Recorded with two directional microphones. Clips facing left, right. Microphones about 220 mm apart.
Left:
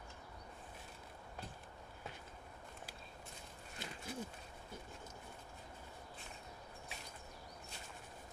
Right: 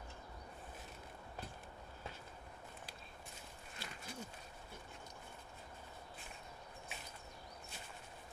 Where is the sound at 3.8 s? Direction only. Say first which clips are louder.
Left 3 dB; 20° left (ahead or behind).